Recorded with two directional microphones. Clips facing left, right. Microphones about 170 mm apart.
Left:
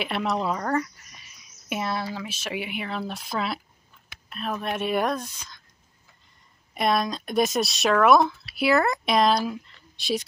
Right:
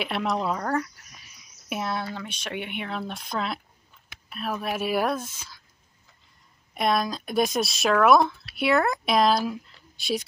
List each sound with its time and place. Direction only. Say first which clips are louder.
0.0 s speech: even; centre (ahead or behind)
6.7 s speech: left 1 dB; centre (ahead or behind)